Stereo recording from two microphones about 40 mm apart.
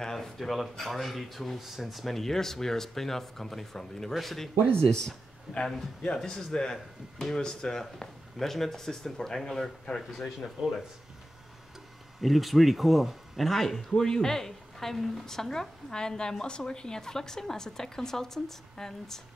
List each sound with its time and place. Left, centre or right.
0.0 s speech: centre
4.8 s speech: centre
5.5 s speech: centre
6.0 s speech: centre
7.2 s speech: centre
12.2 s speech: centre
15.9 s speech: centre